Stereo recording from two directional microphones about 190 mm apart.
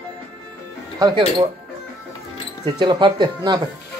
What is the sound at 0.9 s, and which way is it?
Speech, 20° right (ahead or behind).